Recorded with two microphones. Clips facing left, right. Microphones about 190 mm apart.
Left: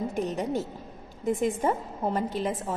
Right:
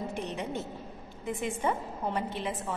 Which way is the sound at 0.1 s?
45° left (ahead or behind).